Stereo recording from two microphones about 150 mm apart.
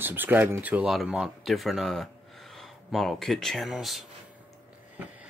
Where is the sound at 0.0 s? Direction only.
15° right (ahead or behind).